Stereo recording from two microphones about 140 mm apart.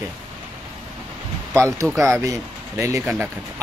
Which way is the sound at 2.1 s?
20° right (ahead or behind).